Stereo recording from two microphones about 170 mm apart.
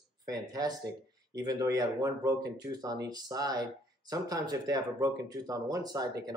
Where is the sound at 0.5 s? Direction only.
20° right (ahead or behind).